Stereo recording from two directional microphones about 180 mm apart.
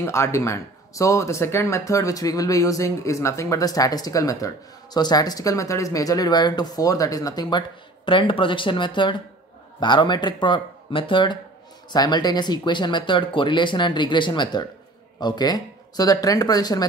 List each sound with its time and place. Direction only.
0.0 s speech: 15° left (ahead or behind)